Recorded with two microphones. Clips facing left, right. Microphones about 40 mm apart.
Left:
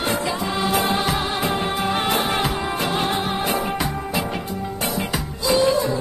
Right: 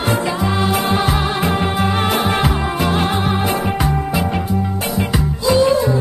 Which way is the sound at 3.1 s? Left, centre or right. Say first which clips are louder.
Right 4 dB; right.